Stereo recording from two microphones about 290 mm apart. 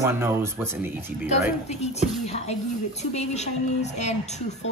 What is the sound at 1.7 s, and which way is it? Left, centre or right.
A woman's voice, left.